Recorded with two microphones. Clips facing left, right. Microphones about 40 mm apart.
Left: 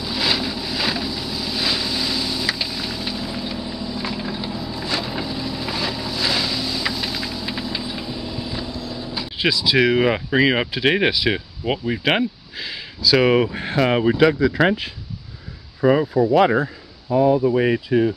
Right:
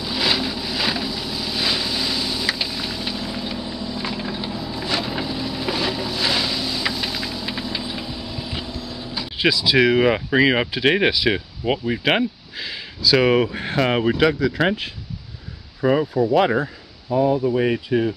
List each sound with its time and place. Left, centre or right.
0.0 s vehicle: centre
8.6 s speech: centre
14.6 s speech: centre
15.8 s speech: centre
16.3 s speech: centre
17.8 s speech: centre